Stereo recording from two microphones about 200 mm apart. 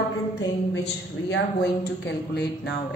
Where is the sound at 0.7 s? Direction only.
60° left (ahead or behind).